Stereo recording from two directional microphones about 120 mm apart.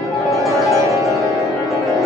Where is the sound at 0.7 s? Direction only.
25° right (ahead or behind).